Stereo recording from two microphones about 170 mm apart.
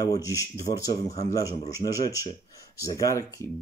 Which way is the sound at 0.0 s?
20° left (ahead or behind).